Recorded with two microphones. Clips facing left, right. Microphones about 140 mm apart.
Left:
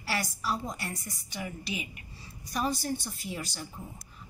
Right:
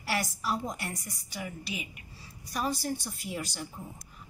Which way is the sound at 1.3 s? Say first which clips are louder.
Left 1 dB; 5° right (ahead or behind).